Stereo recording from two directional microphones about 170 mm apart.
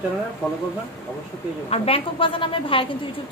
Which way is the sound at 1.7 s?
35° left (ahead or behind).